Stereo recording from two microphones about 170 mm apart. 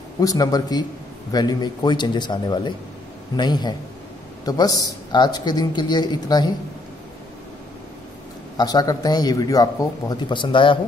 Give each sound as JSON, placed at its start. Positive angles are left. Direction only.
{"t": 0.2, "sound": "a man's voice", "side_deg": 20}
{"t": 8.5, "sound": "a man's voice", "side_deg": 25}